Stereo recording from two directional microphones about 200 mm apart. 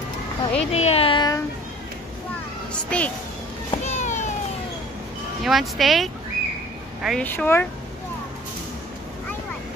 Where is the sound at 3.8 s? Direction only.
35° left (ahead or behind).